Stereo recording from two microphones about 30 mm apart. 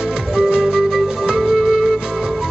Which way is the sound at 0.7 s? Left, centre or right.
Centre.